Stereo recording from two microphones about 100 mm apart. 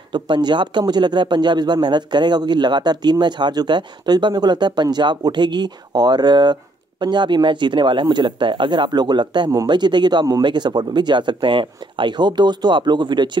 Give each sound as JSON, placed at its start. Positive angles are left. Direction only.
{"t": 0.1, "sound": "speech", "side_deg": -50}